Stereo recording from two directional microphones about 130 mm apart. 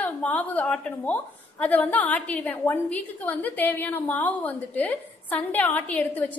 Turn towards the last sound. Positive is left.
turn(degrees=10)  # may be behind; listen again after turning